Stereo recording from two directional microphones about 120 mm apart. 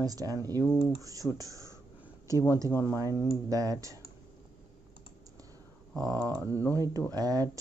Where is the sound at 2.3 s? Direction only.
30° left (ahead or behind).